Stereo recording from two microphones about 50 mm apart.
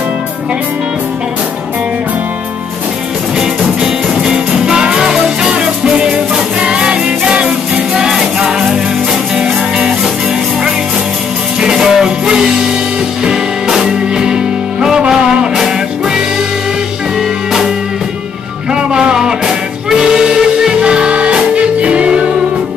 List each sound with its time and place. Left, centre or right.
4.2 s music: centre
11.6 s music: centre
18.7 s music: centre